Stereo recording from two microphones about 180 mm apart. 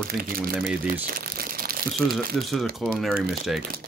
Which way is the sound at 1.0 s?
55° right (ahead or behind).